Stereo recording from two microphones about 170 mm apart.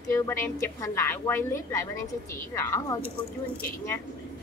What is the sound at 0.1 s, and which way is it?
A woman's voice, 15° left (ahead or behind).